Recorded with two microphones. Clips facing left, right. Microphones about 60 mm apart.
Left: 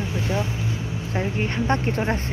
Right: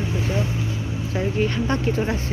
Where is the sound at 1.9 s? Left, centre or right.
Left.